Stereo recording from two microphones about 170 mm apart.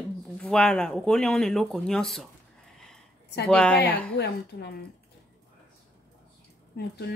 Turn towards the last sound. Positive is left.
turn(degrees=70)  # may be behind; listen again after turning